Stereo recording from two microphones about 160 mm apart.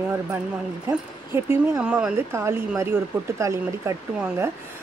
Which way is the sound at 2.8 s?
15° right (ahead or behind).